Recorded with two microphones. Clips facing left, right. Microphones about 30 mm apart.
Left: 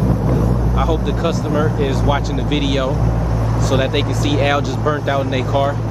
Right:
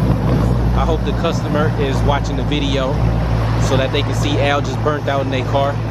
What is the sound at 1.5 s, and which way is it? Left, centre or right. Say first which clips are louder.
Speech: even; right.